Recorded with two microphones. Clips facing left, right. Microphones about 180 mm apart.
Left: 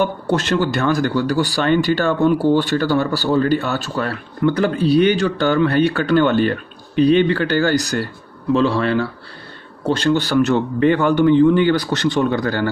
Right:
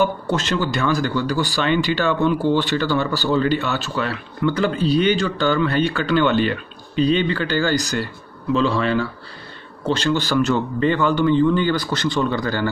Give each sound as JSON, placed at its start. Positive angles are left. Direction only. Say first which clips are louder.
{"t": 0.3, "sound": "a man's voice", "louder": "left 4 dB", "side_deg": 55}